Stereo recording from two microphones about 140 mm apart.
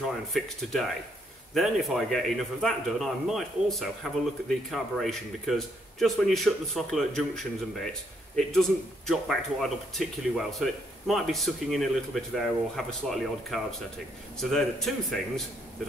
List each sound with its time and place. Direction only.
0.3 s a man's voice: centre (ahead or behind)